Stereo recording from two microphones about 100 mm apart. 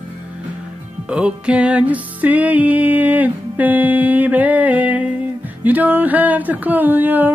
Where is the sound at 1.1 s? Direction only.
10° right (ahead or behind).